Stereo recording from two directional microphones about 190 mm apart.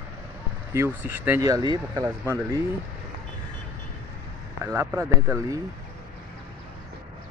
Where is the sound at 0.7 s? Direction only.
10° right (ahead or behind).